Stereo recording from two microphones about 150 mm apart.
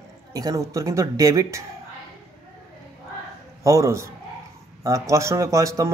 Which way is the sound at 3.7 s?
20° right (ahead or behind).